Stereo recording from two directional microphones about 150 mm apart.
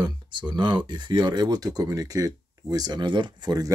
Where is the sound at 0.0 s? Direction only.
30° right (ahead or behind).